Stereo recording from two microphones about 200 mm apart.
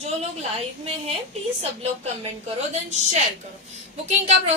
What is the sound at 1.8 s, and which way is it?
A woman's voice, 30° right (ahead or behind).